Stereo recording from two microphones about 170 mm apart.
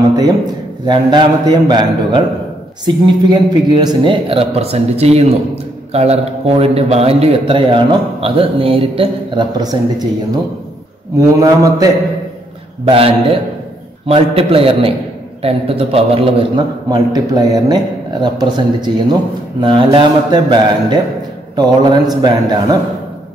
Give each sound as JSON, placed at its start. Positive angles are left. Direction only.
{"t": 0.1, "sound": "a sound", "side_deg": -20}
{"t": 0.8, "sound": "a man's voice", "side_deg": -25}
{"t": 3.3, "sound": "a man's voice", "side_deg": -25}
{"t": 11.1, "sound": "a man's voice", "side_deg": -20}
{"t": 12.8, "sound": "a man's voice", "side_deg": -35}